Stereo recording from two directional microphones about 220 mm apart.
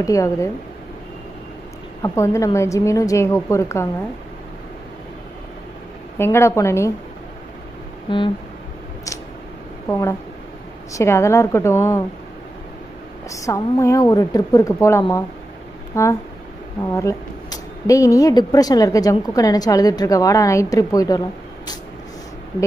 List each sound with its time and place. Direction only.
0.0 s a woman's voice: 15° left (ahead or behind)
2.0 s a woman's voice: 15° left (ahead or behind)
6.1 s a woman's voice: 10° left (ahead or behind)
8.1 s a sound: 20° left (ahead or behind)
9.8 s a woman's voice: 10° left (ahead or behind)
13.3 s a woman's voice: 15° left (ahead or behind)